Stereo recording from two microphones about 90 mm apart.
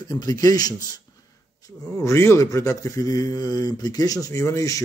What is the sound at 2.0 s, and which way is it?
A man's voice, 30° left (ahead or behind).